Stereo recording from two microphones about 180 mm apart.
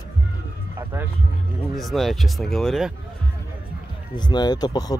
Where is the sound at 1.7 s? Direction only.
Centre (ahead or behind).